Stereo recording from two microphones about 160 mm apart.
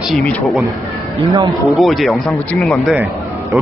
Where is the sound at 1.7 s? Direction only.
Centre (ahead or behind).